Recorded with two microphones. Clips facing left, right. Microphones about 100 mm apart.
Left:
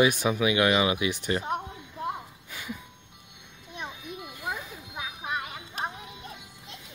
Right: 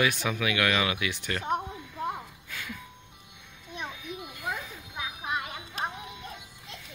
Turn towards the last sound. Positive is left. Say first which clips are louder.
# even
turn(degrees=5)  # may be behind; listen again after turning